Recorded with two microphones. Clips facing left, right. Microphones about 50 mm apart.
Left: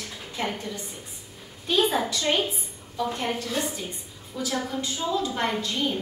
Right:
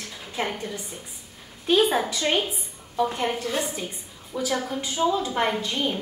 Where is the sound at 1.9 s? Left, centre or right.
Centre.